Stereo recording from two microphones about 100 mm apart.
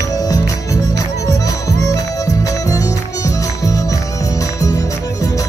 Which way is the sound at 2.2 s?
35° left (ahead or behind).